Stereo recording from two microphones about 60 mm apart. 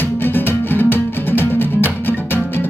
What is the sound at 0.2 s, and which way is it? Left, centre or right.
Music, left.